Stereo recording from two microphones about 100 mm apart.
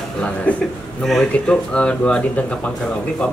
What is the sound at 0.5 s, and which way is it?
Speech, 15° left (ahead or behind).